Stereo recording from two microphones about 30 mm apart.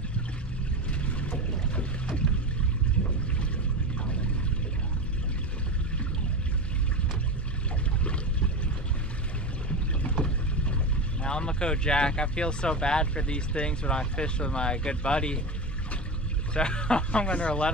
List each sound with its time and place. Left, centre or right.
8.0 s a sound: left
11.2 s speech: left
16.5 s speech: left